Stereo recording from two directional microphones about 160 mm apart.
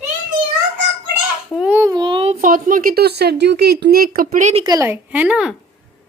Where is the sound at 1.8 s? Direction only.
25° right (ahead or behind).